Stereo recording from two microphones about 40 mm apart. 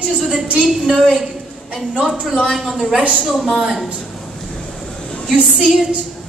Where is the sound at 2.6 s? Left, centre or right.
Centre.